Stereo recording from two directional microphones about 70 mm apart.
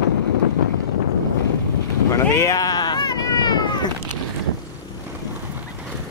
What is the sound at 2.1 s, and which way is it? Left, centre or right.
Cat, left.